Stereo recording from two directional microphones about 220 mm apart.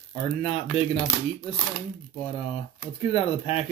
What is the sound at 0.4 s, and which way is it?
Speech, 25° left (ahead or behind).